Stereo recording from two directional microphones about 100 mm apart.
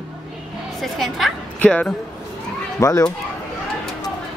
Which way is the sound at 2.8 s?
35° left (ahead or behind).